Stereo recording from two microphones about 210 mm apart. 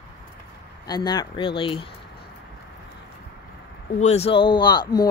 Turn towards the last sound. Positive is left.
turn(degrees=20)  # may be behind; listen again after turning